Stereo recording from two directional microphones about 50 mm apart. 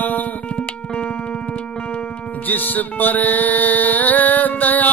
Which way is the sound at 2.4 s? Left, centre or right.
Left.